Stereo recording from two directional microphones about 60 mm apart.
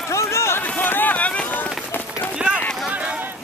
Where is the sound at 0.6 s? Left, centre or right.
Left.